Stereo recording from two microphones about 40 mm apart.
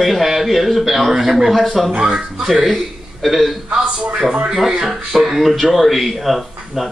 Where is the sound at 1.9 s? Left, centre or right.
Right.